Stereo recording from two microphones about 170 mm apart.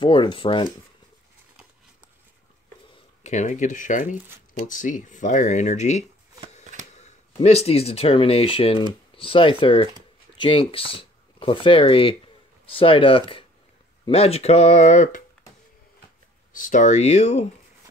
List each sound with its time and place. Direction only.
0.0 s speech: 30° left (ahead or behind)
3.3 s speech: 45° left (ahead or behind)
6.9 s a sound: 45° left (ahead or behind)
7.4 s speech: 35° left (ahead or behind)
16.5 s speech: 50° left (ahead or behind)